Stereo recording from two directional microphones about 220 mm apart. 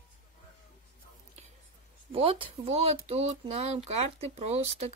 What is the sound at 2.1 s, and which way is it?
Speech, 25° right (ahead or behind).